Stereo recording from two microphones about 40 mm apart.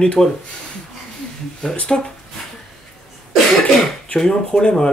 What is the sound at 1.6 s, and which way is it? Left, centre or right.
Speech, left.